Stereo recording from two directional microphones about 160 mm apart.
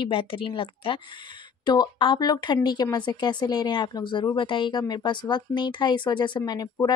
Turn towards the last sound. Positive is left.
turn(degrees=25)  # may be behind; listen again after turning